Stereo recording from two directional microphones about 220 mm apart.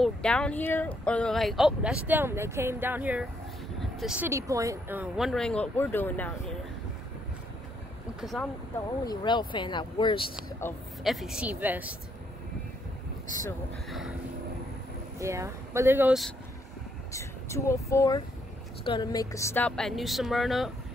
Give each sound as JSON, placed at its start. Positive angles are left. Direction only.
{"t": 0.0, "sound": "speech", "side_deg": 5}
{"t": 8.2, "sound": "speech", "side_deg": 0}
{"t": 9.0, "sound": "speech", "side_deg": 20}
{"t": 11.1, "sound": "speech", "side_deg": 0}
{"t": 13.8, "sound": "speech", "side_deg": 0}
{"t": 15.1, "sound": "speech", "side_deg": -15}
{"t": 17.1, "sound": "speech", "side_deg": 15}